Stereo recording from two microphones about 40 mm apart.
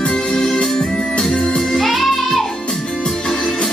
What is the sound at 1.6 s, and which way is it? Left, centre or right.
Music, centre.